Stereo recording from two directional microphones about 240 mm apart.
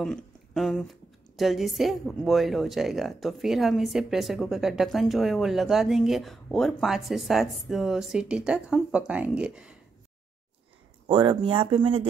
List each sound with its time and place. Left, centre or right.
0.0 s a woman's voice: centre
11.1 s speech: centre